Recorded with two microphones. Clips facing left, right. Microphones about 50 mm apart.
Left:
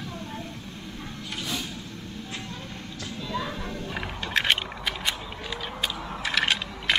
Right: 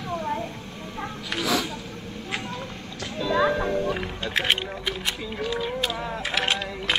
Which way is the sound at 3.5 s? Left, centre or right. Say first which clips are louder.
Right 10 dB; right.